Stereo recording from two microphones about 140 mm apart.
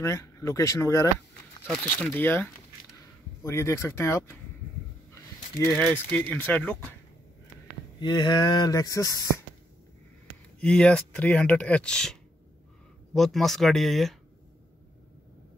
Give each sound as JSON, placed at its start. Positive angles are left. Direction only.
{"t": 0.0, "sound": "speech", "side_deg": 20}
{"t": 1.8, "sound": "speech", "side_deg": 10}
{"t": 5.7, "sound": "speech", "side_deg": 5}
{"t": 8.0, "sound": "speech", "side_deg": 30}
{"t": 10.6, "sound": "speech", "side_deg": 5}